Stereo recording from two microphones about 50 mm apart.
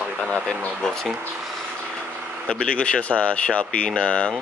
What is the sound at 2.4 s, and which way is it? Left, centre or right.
Speech, left.